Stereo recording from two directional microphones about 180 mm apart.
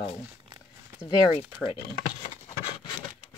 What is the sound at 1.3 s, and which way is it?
Speech, 30° left (ahead or behind).